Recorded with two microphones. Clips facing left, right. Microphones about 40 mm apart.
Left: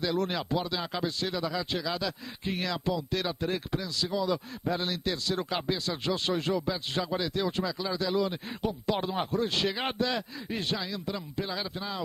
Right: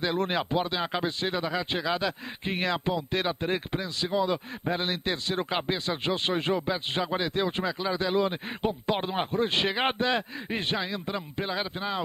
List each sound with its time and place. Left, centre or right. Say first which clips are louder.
0.0 s speech: right 2 dB; right